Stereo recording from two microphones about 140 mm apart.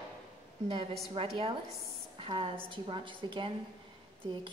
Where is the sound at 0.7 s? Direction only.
35° right (ahead or behind).